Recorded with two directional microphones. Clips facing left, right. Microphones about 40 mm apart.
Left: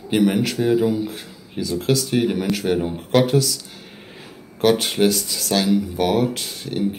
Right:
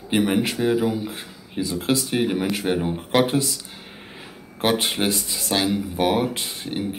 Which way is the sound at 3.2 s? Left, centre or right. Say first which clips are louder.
Left 3 dB; right.